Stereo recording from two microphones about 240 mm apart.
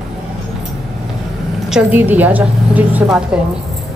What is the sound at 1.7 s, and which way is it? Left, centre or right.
A woman's voice, centre.